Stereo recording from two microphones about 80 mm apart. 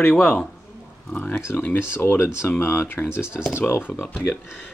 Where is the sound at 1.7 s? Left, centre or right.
Left.